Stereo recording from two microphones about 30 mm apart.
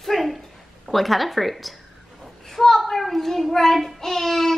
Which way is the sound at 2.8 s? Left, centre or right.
Centre.